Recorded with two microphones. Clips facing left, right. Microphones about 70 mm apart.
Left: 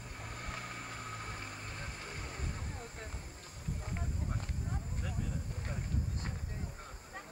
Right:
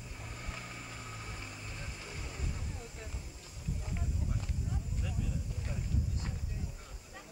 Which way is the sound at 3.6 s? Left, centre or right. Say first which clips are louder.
Right 1 dB; left.